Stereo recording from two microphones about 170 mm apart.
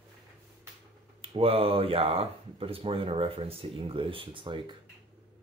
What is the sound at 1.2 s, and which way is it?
Speech, 35° right (ahead or behind).